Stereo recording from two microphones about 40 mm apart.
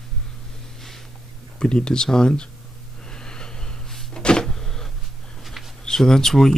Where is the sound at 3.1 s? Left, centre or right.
Centre.